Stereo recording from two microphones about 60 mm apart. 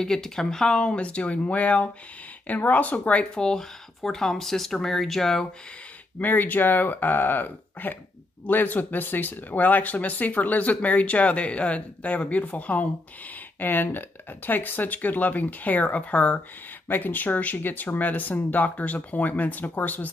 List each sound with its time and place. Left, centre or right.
0.0 s speech: centre; by 3.0 s left
3.3 s speech: centre
6.1 s speech: left
16.8 s speech: left